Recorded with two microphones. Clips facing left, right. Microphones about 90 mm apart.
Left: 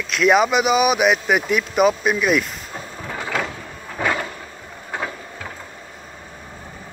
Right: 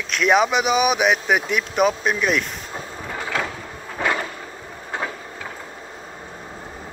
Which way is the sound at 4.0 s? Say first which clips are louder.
Left 1 dB; 5° right (ahead or behind).